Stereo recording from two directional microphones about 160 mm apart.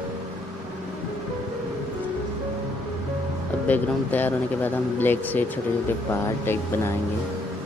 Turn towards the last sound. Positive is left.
turn(degrees=15)  # may be behind; listen again after turning